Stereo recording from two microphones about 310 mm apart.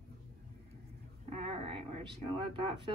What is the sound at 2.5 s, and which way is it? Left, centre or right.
Speech, centre.